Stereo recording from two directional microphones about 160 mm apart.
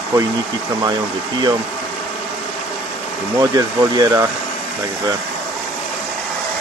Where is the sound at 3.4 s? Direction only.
20° right (ahead or behind).